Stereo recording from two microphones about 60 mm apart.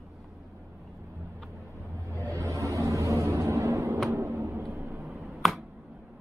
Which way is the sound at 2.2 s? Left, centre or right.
Right.